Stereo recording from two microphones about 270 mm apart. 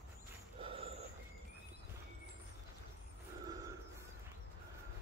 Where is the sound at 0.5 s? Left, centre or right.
Right.